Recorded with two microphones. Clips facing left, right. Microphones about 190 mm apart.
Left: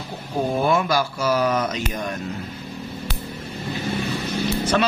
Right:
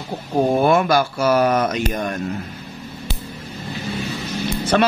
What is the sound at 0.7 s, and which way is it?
A man's voice, 60° right (ahead or behind).